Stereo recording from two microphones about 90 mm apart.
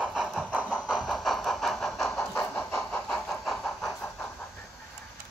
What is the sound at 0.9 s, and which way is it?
Vehicle, centre (ahead or behind).